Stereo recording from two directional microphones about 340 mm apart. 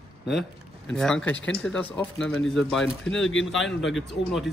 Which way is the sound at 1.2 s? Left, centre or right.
Left.